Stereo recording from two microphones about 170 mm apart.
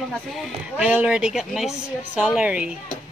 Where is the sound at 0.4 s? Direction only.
5° right (ahead or behind).